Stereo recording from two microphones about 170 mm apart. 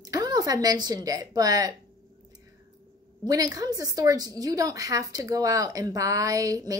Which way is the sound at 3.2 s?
20° right (ahead or behind).